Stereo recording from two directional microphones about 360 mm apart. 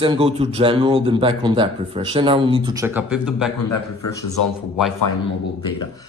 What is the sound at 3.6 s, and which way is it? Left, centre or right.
Speech, left.